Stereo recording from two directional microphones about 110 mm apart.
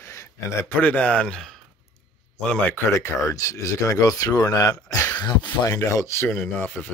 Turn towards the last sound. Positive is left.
turn(degrees=20)  # may be behind; listen again after turning